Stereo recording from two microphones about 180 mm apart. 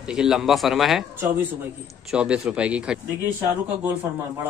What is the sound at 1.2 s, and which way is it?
A man's voice, 15° right (ahead or behind).